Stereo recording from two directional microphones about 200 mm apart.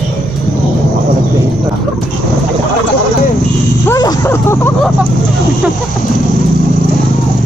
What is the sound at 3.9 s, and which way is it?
Speech, 15° left (ahead or behind).